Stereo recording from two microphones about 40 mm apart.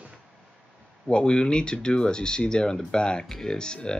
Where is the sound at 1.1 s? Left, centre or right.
Left.